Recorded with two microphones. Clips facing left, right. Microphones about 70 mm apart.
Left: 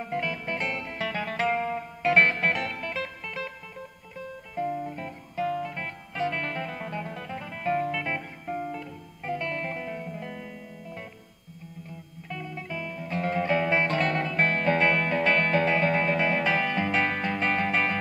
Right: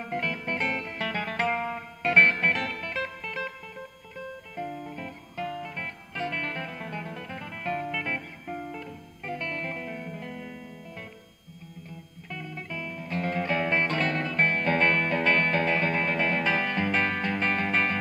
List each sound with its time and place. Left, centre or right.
0.2 s music: centre
4.6 s music: left
5.5 s music: centre
6.1 s music: centre
12.3 s music: centre
13.1 s music: centre